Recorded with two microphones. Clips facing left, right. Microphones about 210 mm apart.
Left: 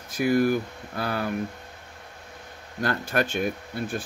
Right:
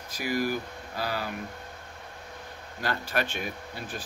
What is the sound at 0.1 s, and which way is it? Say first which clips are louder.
Speech: left 7 dB; 55° left (ahead or behind).